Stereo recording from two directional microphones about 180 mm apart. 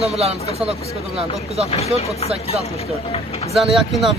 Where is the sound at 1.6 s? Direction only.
35° left (ahead or behind).